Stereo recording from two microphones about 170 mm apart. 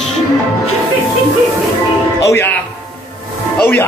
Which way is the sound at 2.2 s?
15° left (ahead or behind).